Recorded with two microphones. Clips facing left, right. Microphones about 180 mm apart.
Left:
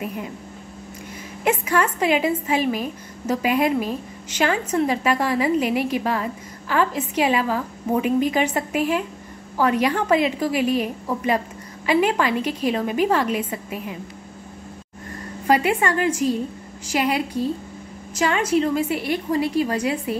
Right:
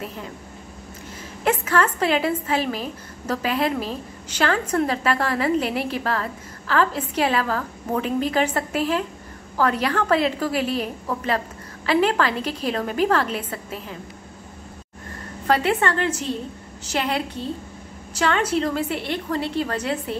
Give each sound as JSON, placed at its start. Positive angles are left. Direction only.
{"t": 0.0, "sound": "a woman's voice", "side_deg": 10}
{"t": 1.4, "sound": "a woman's voice", "side_deg": 10}
{"t": 15.4, "sound": "a woman's voice", "side_deg": 10}